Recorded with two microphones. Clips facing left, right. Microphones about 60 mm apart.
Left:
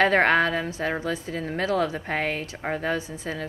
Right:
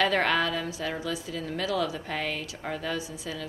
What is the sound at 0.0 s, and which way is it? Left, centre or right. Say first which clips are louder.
A woman's voice: left 5 dB; left.